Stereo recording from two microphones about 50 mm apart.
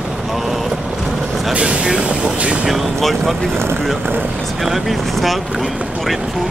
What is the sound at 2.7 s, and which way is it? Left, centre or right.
Speech, centre.